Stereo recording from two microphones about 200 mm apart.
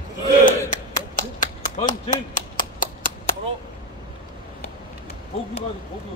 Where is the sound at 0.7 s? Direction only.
40° left (ahead or behind).